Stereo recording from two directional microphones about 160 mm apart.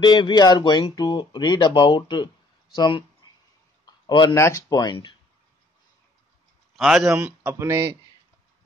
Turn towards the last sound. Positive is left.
turn(degrees=-15)  # may be behind; listen again after turning